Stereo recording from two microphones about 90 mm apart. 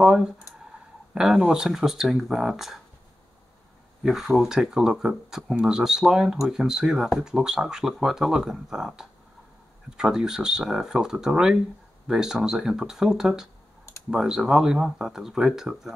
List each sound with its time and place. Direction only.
0.0 s speech: 5° right (ahead or behind)
4.0 s speech: 5° right (ahead or behind)